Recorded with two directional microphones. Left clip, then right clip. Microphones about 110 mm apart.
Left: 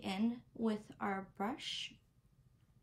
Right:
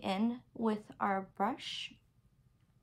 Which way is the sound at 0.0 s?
40° right (ahead or behind).